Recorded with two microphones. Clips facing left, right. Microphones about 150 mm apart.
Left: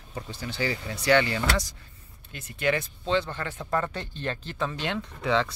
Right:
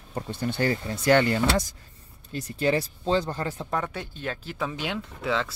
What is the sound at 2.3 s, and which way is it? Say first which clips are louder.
Speech: right 3 dB; 35° right (ahead or behind).